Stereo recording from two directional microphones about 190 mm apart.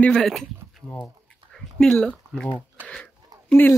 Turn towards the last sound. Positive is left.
turn(degrees=10)  # may be behind; listen again after turning